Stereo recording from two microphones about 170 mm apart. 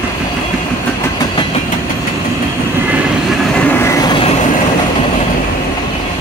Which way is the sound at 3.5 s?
10° left (ahead or behind).